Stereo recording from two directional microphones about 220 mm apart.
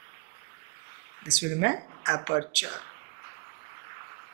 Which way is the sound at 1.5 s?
20° right (ahead or behind).